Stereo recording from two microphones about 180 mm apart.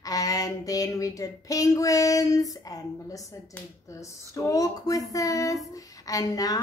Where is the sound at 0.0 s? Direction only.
20° left (ahead or behind).